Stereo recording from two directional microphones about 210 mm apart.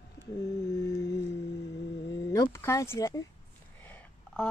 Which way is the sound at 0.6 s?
15° left (ahead or behind).